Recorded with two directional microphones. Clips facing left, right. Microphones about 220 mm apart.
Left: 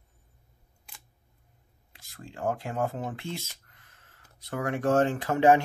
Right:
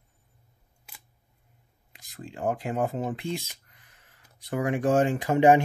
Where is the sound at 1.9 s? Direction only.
15° right (ahead or behind).